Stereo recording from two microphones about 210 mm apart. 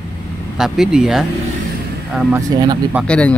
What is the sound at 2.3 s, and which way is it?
Speech, 15° right (ahead or behind).